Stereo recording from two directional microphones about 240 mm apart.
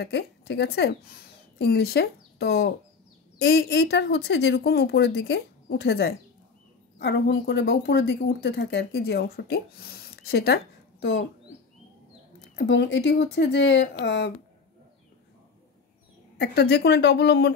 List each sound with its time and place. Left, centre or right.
0.0 s a woman's voice: left
12.5 s speech: left
16.3 s speech: left